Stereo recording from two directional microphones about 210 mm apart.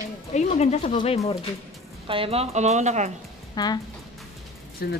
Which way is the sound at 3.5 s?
20° left (ahead or behind).